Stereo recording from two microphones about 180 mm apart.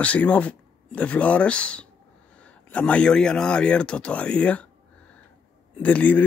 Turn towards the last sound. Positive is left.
turn(degrees=10)  # may be behind; listen again after turning